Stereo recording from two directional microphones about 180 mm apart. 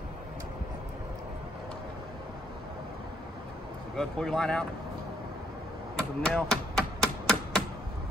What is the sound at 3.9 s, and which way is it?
Speech, centre (ahead or behind).